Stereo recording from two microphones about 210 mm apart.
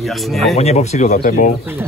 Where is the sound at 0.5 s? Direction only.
30° left (ahead or behind).